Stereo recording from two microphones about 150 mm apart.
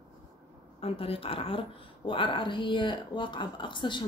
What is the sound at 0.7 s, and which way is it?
Speech, 40° left (ahead or behind).